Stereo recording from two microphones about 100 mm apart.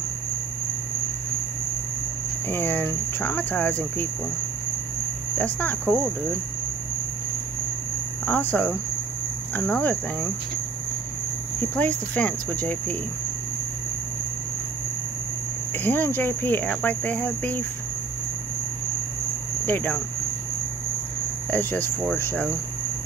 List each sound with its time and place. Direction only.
2.5 s speech: 20° left (ahead or behind)
5.4 s speech: 15° left (ahead or behind)
8.3 s speech: 20° left (ahead or behind)
11.7 s speech: 15° left (ahead or behind)
15.8 s speech: 20° left (ahead or behind)
19.6 s speech: 20° left (ahead or behind)
21.5 s speech: 15° left (ahead or behind)